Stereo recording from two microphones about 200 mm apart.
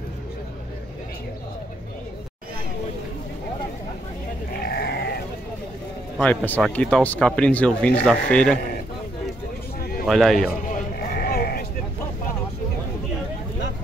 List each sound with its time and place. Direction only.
4.6 s sheep: 55° left (ahead or behind)
6.1 s speech: 5° left (ahead or behind)
10.0 s speech: centre (ahead or behind)
10.7 s a sound: 50° left (ahead or behind)